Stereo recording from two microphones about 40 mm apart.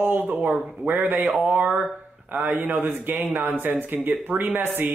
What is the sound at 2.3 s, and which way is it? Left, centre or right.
Speech, right.